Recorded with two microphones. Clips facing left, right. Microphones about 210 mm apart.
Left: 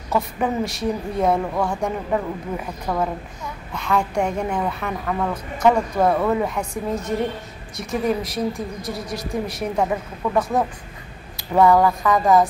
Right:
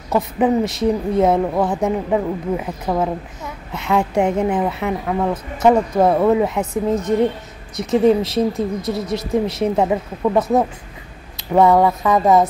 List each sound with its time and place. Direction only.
0.1 s a woman's voice: 20° right (ahead or behind)